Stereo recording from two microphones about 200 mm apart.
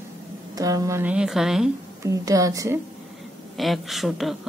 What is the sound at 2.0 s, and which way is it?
Speech, 15° right (ahead or behind).